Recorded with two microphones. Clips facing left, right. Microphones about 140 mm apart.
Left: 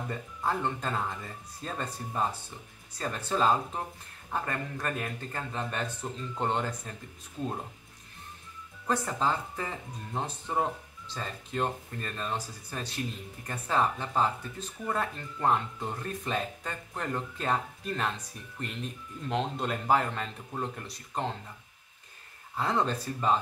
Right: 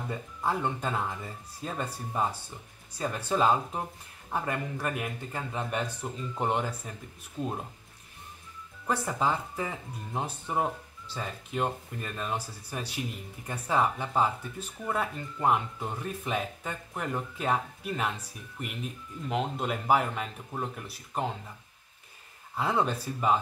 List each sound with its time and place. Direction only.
0.1 s speech: 10° right (ahead or behind)
8.8 s speech: 10° right (ahead or behind)
22.6 s speech: 10° right (ahead or behind)